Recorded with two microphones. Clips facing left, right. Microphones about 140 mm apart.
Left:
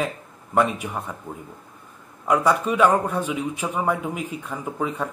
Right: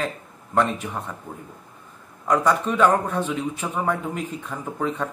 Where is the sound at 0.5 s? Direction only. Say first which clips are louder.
Left 1 dB; 10° left (ahead or behind).